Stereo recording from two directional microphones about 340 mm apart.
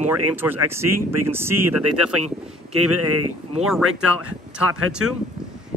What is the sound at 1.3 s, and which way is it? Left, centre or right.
Speech, centre.